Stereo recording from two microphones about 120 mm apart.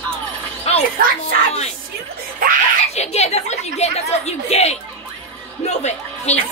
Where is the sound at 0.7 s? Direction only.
60° left (ahead or behind).